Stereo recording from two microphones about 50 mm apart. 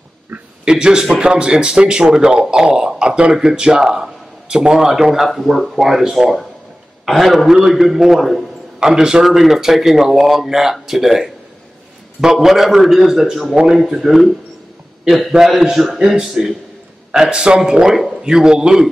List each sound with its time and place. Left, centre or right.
0.3 s a sound: right
0.7 s speech: centre
8.7 s a man's voice: centre
16.0 s speech: centre